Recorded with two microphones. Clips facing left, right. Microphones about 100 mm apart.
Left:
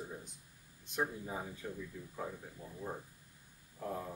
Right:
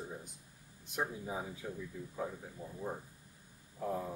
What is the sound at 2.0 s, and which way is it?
Speech, 15° right (ahead or behind).